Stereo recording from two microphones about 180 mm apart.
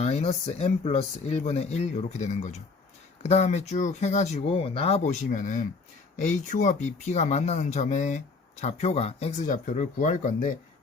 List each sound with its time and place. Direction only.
0.0 s speech: 35° left (ahead or behind)